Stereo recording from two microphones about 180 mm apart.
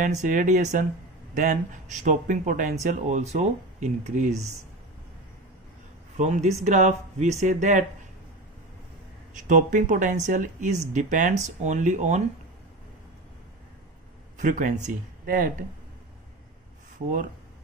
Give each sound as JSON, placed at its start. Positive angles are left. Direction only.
{"t": 0.0, "sound": "speech", "side_deg": -45}
{"t": 6.1, "sound": "speech", "side_deg": -40}
{"t": 9.3, "sound": "speech", "side_deg": -45}
{"t": 14.4, "sound": "speech", "side_deg": -45}